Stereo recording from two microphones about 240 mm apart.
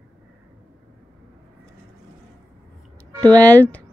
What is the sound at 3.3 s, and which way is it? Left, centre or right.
Speech, centre.